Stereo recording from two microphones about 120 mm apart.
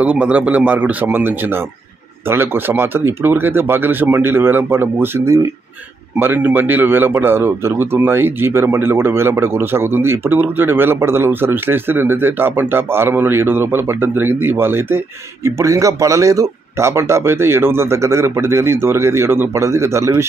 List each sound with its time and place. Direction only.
0.0 s speech: 10° right (ahead or behind)
2.3 s speech: 15° right (ahead or behind)